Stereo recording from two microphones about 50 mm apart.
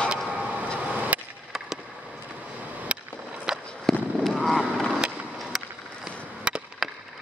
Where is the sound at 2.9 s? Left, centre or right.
Right.